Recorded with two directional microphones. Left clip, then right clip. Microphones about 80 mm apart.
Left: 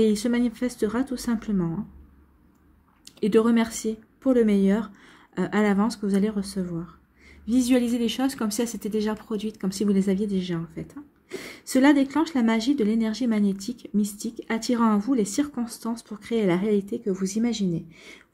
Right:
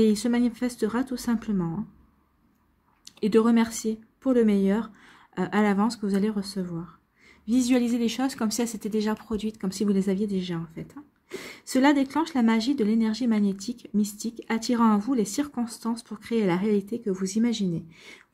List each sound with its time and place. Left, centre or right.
0.0 s speech: right
3.1 s speech: right